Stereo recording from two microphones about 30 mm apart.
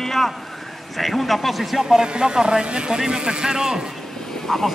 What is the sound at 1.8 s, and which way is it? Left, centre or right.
Speech, right.